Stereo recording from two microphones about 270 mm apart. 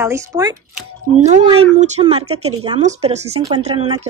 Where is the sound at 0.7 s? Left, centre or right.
Right.